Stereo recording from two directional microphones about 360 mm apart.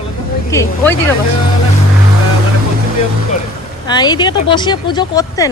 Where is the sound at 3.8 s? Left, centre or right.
Centre.